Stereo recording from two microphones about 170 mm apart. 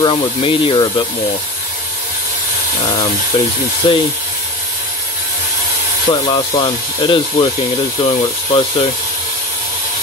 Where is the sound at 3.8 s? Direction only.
30° left (ahead or behind).